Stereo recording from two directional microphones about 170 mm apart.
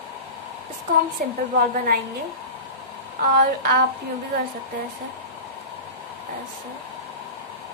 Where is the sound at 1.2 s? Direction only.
55° right (ahead or behind).